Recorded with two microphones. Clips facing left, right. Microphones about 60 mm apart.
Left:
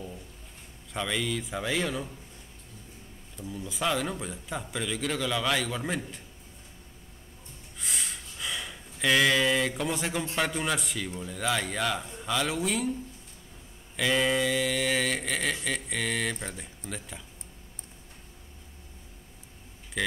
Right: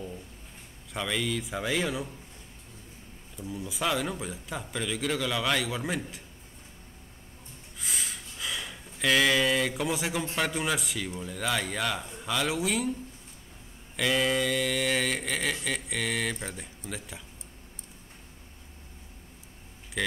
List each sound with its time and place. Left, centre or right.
0.9 s speech: centre
3.3 s speech: centre
7.8 s a sound: centre
10.3 s speech: centre
13.9 s speech: centre
20.0 s speech: centre